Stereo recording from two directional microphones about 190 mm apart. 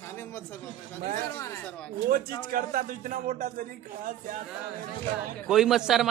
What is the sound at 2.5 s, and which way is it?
Speech, 45° right (ahead or behind).